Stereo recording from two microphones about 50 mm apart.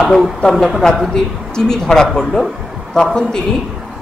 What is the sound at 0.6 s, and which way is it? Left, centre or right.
A man's voice, centre.